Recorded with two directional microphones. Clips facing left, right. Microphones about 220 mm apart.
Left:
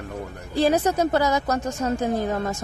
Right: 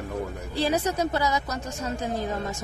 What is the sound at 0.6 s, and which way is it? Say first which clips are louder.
A woman's voice: left 5 dB; 50° left (ahead or behind).